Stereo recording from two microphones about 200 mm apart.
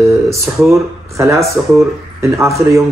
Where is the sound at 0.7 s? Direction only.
15° right (ahead or behind).